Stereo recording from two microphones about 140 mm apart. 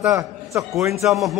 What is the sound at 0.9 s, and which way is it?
Speech, centre (ahead or behind).